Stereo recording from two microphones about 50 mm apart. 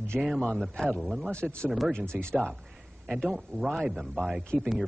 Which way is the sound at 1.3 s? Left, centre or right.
Left.